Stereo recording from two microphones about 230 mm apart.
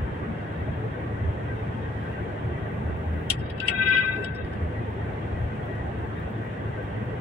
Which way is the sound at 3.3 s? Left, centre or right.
Left.